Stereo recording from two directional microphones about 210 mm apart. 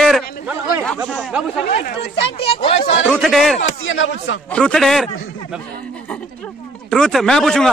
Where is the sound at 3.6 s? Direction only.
60° left (ahead or behind).